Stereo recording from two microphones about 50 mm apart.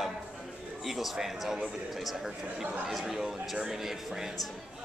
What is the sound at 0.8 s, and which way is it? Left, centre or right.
Speech, centre.